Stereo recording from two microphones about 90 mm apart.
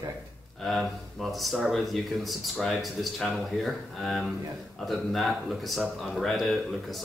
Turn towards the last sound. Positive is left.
turn(degrees=0)  # may be behind; listen again after turning